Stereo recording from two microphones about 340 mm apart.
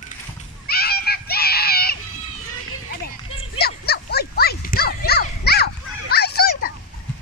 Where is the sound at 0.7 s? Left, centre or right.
Left.